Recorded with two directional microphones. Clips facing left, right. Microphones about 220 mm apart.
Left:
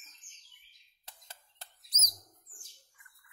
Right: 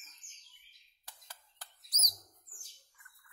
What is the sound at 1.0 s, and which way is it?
Bird, 25° left (ahead or behind).